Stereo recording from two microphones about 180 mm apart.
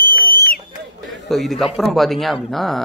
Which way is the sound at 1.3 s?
Centre (ahead or behind).